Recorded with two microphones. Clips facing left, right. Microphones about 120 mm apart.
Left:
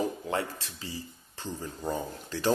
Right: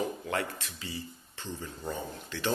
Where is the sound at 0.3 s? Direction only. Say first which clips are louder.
Left 2 dB; 25° left (ahead or behind).